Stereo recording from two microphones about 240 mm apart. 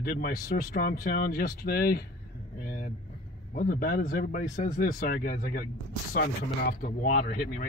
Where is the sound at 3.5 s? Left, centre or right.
Left.